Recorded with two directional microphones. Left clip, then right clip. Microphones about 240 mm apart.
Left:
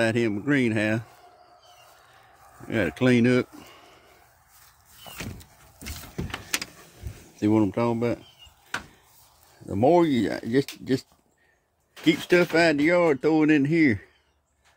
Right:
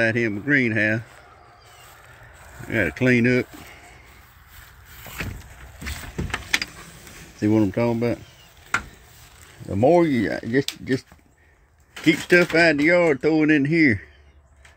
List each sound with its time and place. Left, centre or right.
0.0 s speech: centre
2.7 s speech: centre
7.3 s speech: centre
9.7 s speech: centre